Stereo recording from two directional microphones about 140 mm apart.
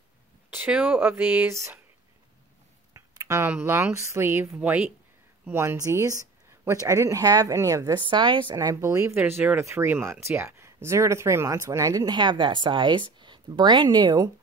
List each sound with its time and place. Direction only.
0.5 s speech: 10° right (ahead or behind)
2.9 s a sound: 25° right (ahead or behind)
3.5 s speech: 15° right (ahead or behind)